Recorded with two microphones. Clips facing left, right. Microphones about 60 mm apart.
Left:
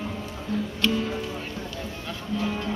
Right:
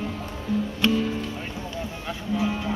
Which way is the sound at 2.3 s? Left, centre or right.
Centre.